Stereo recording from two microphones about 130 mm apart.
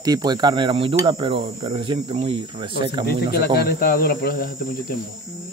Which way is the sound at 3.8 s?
90° left.